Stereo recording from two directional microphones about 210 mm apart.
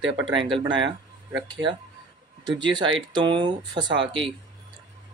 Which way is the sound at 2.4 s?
20° right (ahead or behind).